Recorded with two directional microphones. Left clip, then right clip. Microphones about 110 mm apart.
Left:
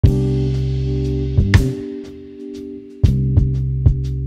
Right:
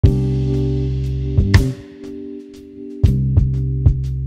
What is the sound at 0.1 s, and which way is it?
Music, 15° right (ahead or behind).